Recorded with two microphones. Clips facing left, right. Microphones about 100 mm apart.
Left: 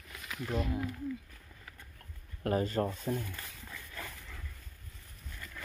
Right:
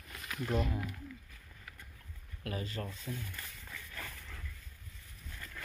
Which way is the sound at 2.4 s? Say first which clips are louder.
Left 10 dB; 40° left (ahead or behind).